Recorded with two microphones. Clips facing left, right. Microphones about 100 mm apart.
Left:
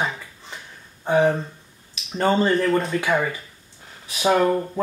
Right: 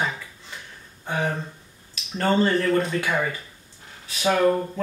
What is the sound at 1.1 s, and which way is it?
Speech, 30° left (ahead or behind).